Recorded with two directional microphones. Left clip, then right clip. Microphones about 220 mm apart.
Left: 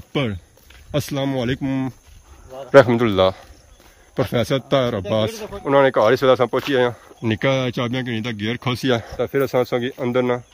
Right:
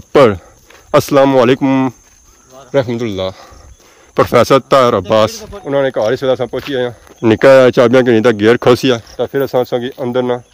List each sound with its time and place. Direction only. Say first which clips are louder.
0.1 s speech: right 17 dB; 15° right (ahead or behind)
2.7 s speech: left 3 dB; 15° left (ahead or behind)
4.1 s speech: right 12 dB; 10° right (ahead or behind)
5.7 s speech: right 1 dB; 5° left (ahead or behind)
7.2 s speech: right 16 dB; 15° right (ahead or behind)
8.8 s speech: right 6 dB; centre (ahead or behind)